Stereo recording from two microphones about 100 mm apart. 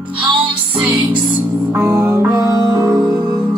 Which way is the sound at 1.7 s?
30° right (ahead or behind).